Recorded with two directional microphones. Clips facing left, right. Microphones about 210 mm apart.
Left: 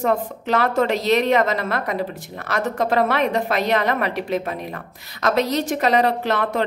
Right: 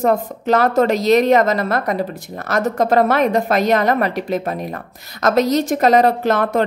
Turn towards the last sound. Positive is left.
turn(degrees=-45)  # may be behind; listen again after turning